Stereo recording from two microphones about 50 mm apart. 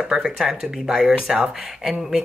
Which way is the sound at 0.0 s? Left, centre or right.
Centre.